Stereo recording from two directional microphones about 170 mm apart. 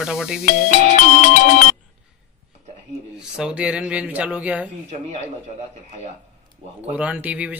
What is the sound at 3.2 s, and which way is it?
Speech, 5° right (ahead or behind).